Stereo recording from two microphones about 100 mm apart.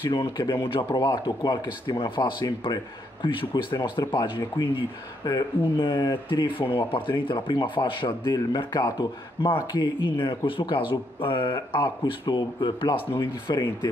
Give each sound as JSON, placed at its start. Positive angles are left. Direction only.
{"t": 0.1, "sound": "speech", "side_deg": 50}